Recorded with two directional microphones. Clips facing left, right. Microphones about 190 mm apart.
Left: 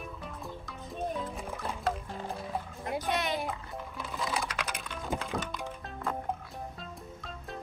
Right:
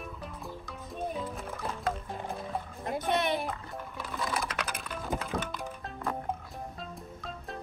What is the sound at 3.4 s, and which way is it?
Music, centre (ahead or behind).